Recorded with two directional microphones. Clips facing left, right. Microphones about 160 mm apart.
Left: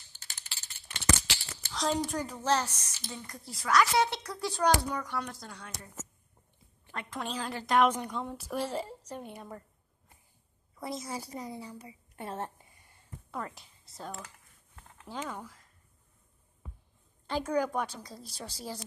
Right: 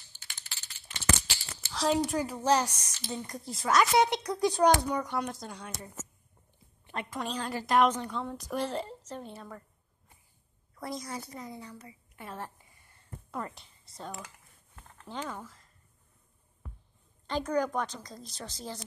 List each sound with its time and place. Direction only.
0.8 s a sound: 65° left (ahead or behind)
1.7 s speech: centre (ahead or behind); by 5.9 s 20° right (ahead or behind)
7.1 s a woman's voice: centre (ahead or behind)
7.9 s a woman's voice: 10° left (ahead or behind)
10.8 s a woman's voice: centre (ahead or behind)
11.9 s a sound: 25° left (ahead or behind)
13.3 s speech: centre (ahead or behind)
17.3 s a woman's voice: 5° left (ahead or behind)